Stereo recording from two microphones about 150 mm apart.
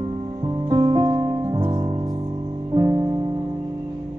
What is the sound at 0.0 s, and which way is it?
Music, 30° right (ahead or behind).